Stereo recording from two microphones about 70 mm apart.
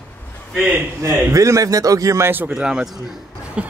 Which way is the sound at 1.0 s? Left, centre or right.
Right.